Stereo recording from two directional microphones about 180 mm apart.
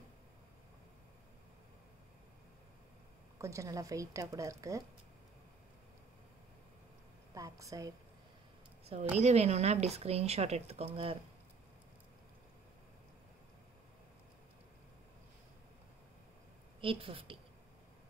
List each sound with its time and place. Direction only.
3.3 s a woman's voice: 15° right (ahead or behind)
7.3 s a woman's voice: 20° right (ahead or behind)
9.2 s speech: 40° right (ahead or behind)
16.8 s speech: 30° right (ahead or behind)